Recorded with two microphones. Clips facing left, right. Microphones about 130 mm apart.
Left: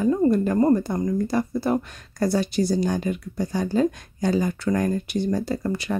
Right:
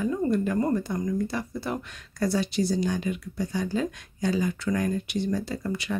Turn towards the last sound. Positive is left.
turn(degrees=45)  # may be behind; listen again after turning